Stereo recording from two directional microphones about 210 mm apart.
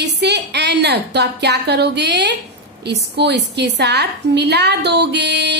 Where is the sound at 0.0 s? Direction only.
55° right (ahead or behind).